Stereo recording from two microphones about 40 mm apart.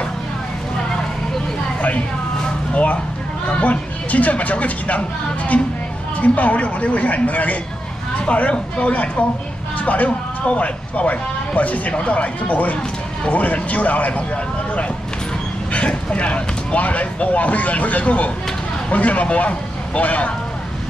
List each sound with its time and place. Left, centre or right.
2.7 s speech: left
15.7 s speech: left